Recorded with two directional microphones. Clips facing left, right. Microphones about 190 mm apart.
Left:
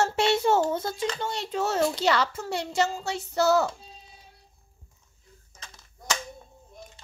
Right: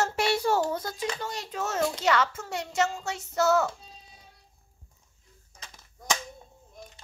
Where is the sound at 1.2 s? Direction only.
30° left (ahead or behind).